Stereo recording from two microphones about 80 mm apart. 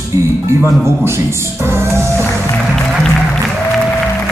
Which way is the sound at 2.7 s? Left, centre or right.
Centre.